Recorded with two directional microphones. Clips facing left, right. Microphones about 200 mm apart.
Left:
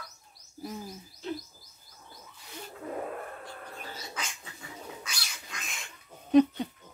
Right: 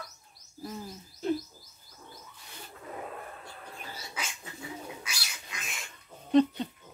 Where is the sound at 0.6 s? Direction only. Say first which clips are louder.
Left 1 dB; 15° left (ahead or behind).